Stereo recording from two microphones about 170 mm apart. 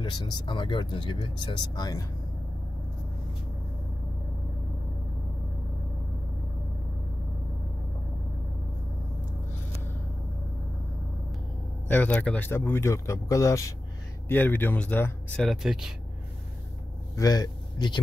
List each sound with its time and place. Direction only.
0.0 s speech: 25° left (ahead or behind)
11.9 s speech: 10° left (ahead or behind)
15.4 s speech: centre (ahead or behind)
17.1 s a man's voice: 20° left (ahead or behind)